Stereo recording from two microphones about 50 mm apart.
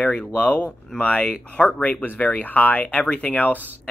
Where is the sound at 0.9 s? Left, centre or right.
Left.